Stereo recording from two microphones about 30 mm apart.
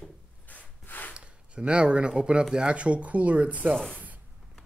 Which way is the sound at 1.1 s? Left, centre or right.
Right.